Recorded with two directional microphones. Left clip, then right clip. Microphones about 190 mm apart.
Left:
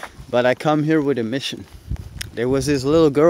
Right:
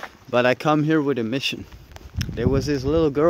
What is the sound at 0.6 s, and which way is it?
Speech, 5° left (ahead or behind).